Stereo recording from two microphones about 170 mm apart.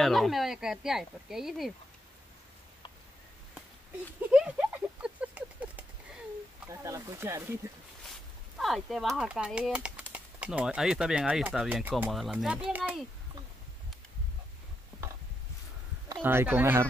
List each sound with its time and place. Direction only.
0.0 s speech: centre (ahead or behind)
4.3 s a sound: 5° right (ahead or behind)
6.7 s speech: 15° right (ahead or behind)
8.0 s speech: centre (ahead or behind)
16.2 s speech: 10° right (ahead or behind)